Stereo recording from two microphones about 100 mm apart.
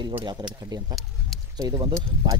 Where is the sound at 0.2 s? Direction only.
45° right (ahead or behind).